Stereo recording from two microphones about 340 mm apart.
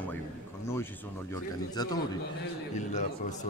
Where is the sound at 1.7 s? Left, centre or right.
Centre.